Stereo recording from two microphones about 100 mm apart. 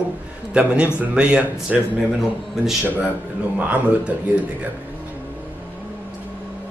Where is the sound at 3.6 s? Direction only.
15° right (ahead or behind).